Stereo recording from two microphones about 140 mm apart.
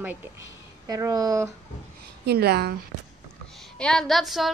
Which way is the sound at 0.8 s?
25° right (ahead or behind).